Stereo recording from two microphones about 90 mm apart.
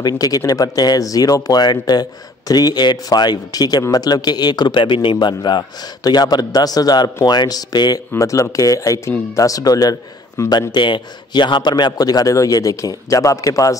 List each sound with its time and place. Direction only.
0.0 s a man's voice: 45° left (ahead or behind)
8.2 s a man's voice: 35° left (ahead or behind)
10.7 s a man's voice: 55° left (ahead or behind); by 13.7 s 40° left (ahead or behind)